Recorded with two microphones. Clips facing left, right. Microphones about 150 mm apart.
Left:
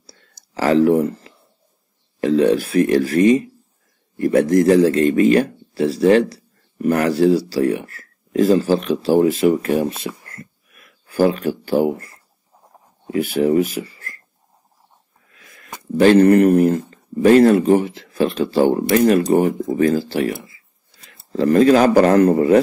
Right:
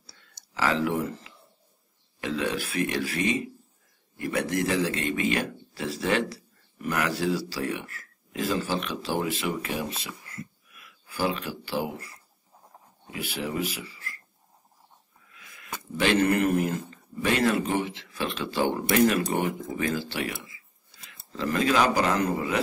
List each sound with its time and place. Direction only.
0.0 s whispering: 40° left (ahead or behind)
2.1 s speech: 40° left (ahead or behind)
15.3 s speech: 45° left (ahead or behind)